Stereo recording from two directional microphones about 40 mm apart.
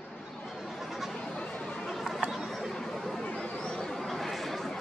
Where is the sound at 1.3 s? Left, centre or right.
Left.